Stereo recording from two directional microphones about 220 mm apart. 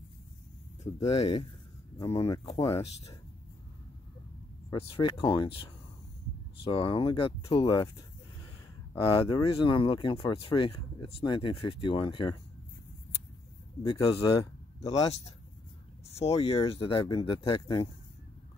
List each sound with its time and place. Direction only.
1.0 s speech: 30° left (ahead or behind)
4.6 s speech: 25° left (ahead or behind)
9.0 s speech: 25° left (ahead or behind)
13.8 s speech: 20° left (ahead or behind)
16.2 s speech: 25° left (ahead or behind)